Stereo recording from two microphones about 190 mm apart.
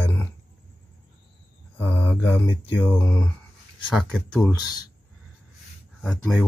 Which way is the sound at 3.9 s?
Centre (ahead or behind).